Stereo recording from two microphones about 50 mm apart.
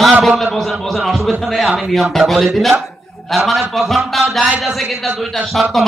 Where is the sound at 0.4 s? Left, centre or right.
Centre.